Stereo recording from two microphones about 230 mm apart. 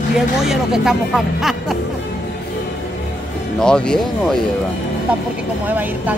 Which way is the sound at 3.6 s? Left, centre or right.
Centre.